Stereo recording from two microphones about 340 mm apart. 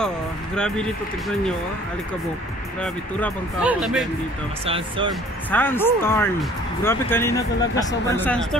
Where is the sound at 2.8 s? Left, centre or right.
Centre.